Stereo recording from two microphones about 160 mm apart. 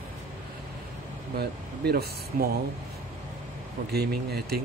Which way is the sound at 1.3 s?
80° right.